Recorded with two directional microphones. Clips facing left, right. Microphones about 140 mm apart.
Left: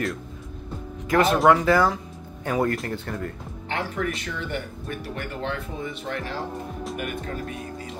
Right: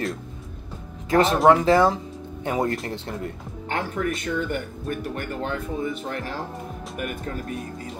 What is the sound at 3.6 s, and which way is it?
Speech, 45° right (ahead or behind).